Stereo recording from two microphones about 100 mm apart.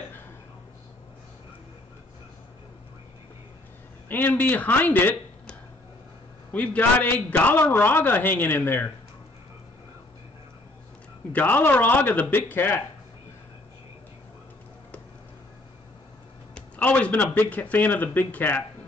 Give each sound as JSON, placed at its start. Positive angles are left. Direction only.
{"t": 4.1, "sound": "speech", "side_deg": 20}
{"t": 11.3, "sound": "speech", "side_deg": 20}
{"t": 16.5, "sound": "speech", "side_deg": 15}